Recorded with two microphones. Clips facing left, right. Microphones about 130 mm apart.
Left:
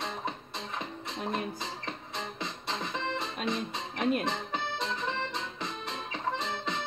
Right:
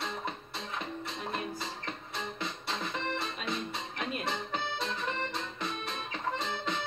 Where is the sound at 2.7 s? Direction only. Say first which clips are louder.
Left 2 dB; 20° left (ahead or behind).